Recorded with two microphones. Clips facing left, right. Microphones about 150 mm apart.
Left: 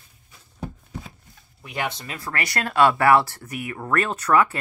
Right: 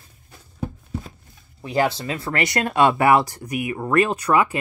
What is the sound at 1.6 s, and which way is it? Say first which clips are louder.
Speech: right 8 dB; 35° right (ahead or behind).